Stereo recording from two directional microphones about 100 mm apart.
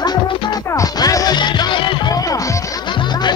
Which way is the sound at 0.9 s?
40° left (ahead or behind).